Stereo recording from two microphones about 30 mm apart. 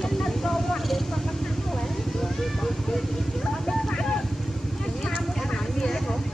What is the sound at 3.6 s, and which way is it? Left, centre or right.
Vehicle, left.